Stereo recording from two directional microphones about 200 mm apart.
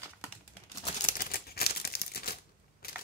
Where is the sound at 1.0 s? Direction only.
45° left (ahead or behind).